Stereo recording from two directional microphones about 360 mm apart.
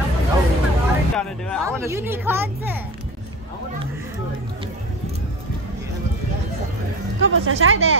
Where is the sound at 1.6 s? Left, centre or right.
Centre.